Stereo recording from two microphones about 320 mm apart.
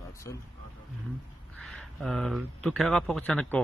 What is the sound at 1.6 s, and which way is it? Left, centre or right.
A man's voice, centre.